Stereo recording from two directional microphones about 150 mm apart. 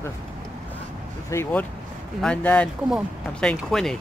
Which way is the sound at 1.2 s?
20° left (ahead or behind).